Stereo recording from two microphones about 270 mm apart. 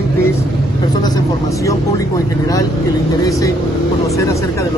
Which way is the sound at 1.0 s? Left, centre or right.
Centre.